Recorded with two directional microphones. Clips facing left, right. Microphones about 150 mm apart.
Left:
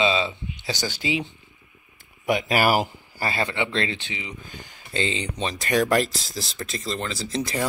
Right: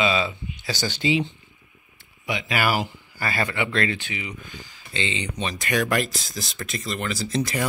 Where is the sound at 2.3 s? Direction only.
40° left (ahead or behind); by 4.3 s 25° left (ahead or behind).